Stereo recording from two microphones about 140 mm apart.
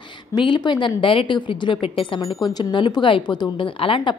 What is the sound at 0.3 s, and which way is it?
A woman's voice, 35° left (ahead or behind).